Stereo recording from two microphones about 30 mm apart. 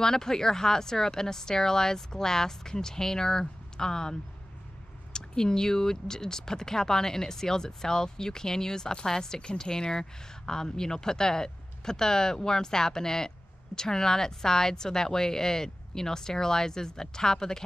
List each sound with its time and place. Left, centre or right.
0.0 s speech: centre